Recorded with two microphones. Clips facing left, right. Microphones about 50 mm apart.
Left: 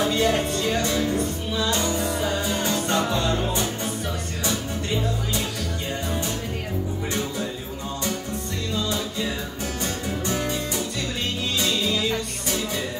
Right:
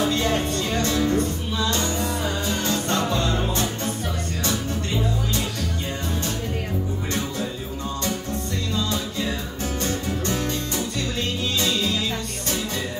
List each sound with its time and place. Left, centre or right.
0.1 s music: centre
9.8 s music: centre
11.6 s music: centre